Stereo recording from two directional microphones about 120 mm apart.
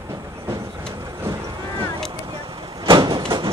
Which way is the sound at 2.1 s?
45° right (ahead or behind).